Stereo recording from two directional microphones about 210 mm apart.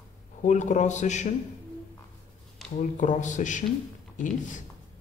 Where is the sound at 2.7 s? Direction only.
35° left (ahead or behind).